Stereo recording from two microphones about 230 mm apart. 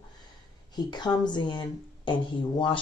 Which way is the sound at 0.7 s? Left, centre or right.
Centre.